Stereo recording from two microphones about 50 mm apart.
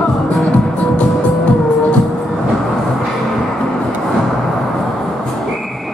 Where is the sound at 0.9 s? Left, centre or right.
Left.